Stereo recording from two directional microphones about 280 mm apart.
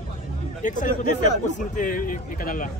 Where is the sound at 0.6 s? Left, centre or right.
Left.